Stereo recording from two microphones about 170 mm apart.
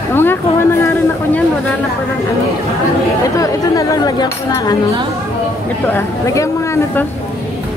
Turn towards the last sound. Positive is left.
turn(degrees=15)  # may be behind; listen again after turning